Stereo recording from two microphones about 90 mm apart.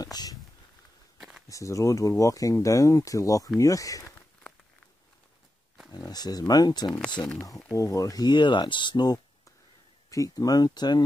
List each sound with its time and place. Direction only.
0.0 s a sound: 45° left (ahead or behind)
1.5 s speech: 35° left (ahead or behind)
5.9 s speech: 45° left (ahead or behind)
7.7 s speech: 35° left (ahead or behind)
10.0 s speech: 40° left (ahead or behind)